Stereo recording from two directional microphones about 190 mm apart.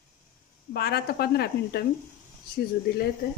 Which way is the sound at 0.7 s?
55° left (ahead or behind).